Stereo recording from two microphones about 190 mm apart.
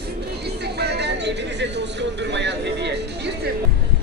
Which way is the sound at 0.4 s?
60° right (ahead or behind).